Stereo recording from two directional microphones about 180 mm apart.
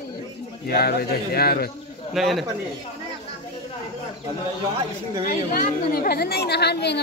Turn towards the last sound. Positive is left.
turn(degrees=65)  # may be behind; listen again after turning